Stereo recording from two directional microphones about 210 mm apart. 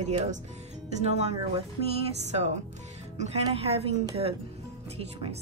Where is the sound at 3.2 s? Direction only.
30° right (ahead or behind).